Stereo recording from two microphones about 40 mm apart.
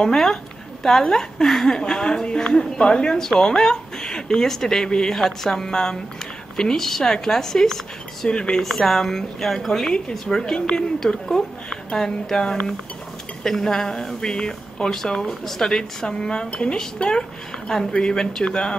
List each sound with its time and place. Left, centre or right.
0.0 s speech: centre
8.3 s speech: left
8.5 s a woman's voice: centre